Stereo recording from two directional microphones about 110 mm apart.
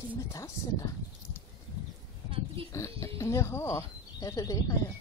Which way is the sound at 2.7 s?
30° left (ahead or behind).